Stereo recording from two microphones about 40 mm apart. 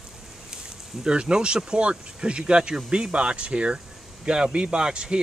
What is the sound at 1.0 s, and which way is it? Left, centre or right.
Speech, right.